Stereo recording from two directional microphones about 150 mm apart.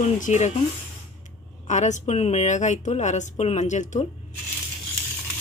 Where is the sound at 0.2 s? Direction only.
50° left (ahead or behind).